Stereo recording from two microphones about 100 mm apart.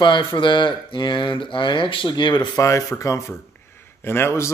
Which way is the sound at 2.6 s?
30° left (ahead or behind).